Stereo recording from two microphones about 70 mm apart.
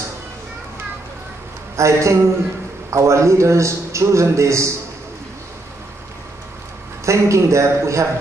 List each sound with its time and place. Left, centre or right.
1.8 s a man's voice: right
7.1 s a man's voice: right